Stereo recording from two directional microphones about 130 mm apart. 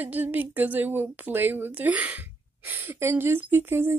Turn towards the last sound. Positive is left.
turn(degrees=-15)  # may be behind; listen again after turning